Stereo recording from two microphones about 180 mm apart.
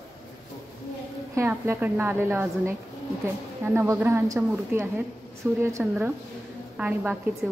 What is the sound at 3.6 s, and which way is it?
A woman's voice, 15° right (ahead or behind).